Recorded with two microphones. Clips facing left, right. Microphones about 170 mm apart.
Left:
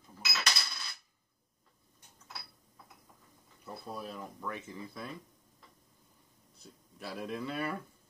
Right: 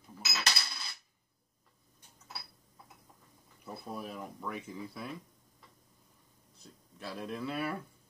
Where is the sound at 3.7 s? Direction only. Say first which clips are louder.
Right 1 dB; 5° right (ahead or behind).